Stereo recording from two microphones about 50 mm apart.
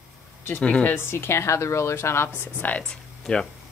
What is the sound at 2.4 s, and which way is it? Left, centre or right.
Speech, left.